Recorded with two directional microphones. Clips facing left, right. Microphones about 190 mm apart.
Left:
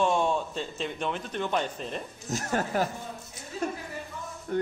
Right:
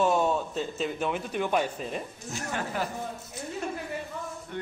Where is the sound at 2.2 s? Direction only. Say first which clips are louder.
Left 7 dB; 40° left (ahead or behind).